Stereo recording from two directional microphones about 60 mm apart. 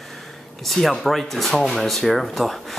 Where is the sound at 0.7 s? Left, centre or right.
Centre.